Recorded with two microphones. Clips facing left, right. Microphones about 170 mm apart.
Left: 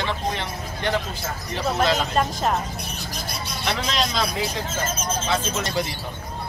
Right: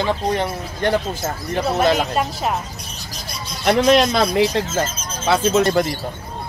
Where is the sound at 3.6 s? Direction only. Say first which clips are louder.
Right 12 dB; 60° right (ahead or behind).